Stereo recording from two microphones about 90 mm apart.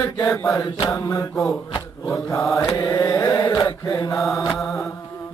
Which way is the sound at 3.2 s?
45° left (ahead or behind).